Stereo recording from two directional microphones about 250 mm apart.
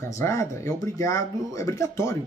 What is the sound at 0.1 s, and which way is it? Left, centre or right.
Speech, centre.